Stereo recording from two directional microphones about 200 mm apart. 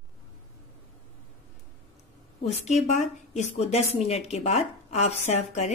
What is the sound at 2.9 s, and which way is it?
Speech, 35° left (ahead or behind).